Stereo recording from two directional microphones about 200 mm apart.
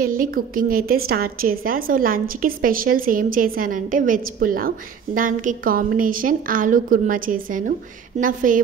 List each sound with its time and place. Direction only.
0.0 s a woman's voice: 45° right (ahead or behind)